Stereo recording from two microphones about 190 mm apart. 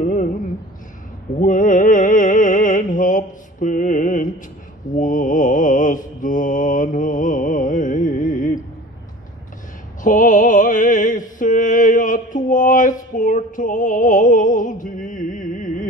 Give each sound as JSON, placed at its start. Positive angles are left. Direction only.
{"t": 0.0, "sound": "a sound", "side_deg": 40}
{"t": 1.4, "sound": "music", "side_deg": 45}
{"t": 4.9, "sound": "mantra", "side_deg": 45}
{"t": 10.0, "sound": "music", "side_deg": 45}